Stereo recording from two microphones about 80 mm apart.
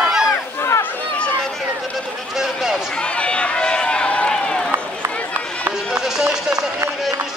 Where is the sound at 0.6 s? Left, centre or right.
Left.